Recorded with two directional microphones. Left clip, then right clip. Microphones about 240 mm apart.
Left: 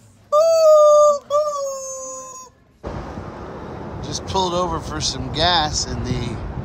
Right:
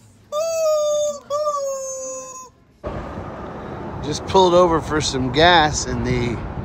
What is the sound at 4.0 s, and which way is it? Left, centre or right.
Speech, centre.